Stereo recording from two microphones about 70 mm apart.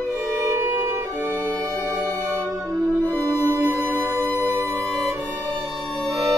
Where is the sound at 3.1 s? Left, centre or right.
Left.